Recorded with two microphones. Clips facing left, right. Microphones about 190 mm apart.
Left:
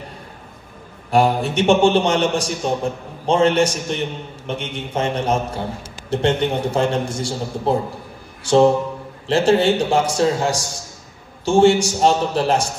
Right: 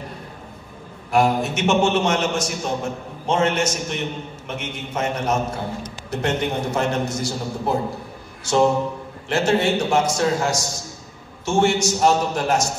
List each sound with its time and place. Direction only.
1.1 s a man's voice: 30° left (ahead or behind)
9.3 s a man's voice: 30° left (ahead or behind)